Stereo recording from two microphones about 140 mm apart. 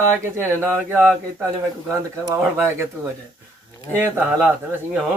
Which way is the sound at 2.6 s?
20° right (ahead or behind).